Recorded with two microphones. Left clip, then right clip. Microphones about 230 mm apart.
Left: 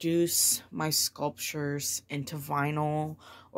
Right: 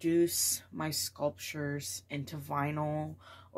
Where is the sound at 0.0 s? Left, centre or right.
Left.